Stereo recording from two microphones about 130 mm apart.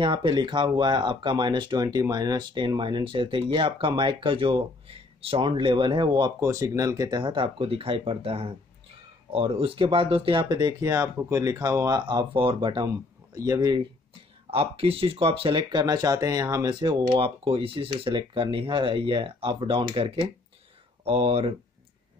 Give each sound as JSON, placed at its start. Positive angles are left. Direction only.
{"t": 0.0, "sound": "speech", "side_deg": -40}
{"t": 6.4, "sound": "speech", "side_deg": -25}
{"t": 10.5, "sound": "speech", "side_deg": -30}
{"t": 12.1, "sound": "speech", "side_deg": -40}
{"t": 14.5, "sound": "speech", "side_deg": -45}
{"t": 17.2, "sound": "speech", "side_deg": -45}